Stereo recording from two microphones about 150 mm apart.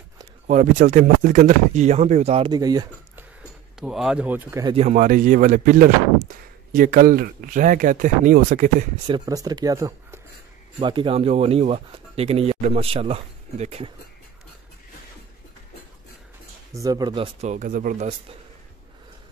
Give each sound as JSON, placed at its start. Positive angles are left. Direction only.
{"t": 0.5, "sound": "speech", "side_deg": -55}
{"t": 2.5, "sound": "speech", "side_deg": -25}
{"t": 3.8, "sound": "speech", "side_deg": -5}
{"t": 4.7, "sound": "speech", "side_deg": -55}
{"t": 9.0, "sound": "speech", "side_deg": -30}
{"t": 10.8, "sound": "speech", "side_deg": -35}
{"t": 16.8, "sound": "speech", "side_deg": -25}
{"t": 17.4, "sound": "speech", "side_deg": -55}